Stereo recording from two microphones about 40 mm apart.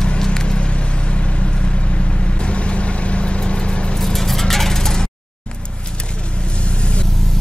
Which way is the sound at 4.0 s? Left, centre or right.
Centre.